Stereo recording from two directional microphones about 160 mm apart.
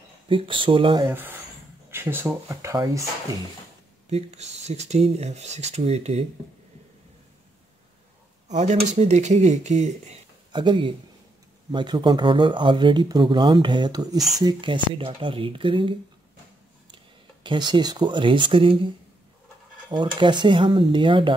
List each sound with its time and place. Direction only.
0.3 s speech: 30° right (ahead or behind)
1.0 s speech: 10° right (ahead or behind)
4.1 s speech: 45° right (ahead or behind)
8.5 s speech: 45° right (ahead or behind)
10.5 s speech: 30° right (ahead or behind)
16.9 s speech: 30° right (ahead or behind)
19.9 s speech: 30° right (ahead or behind)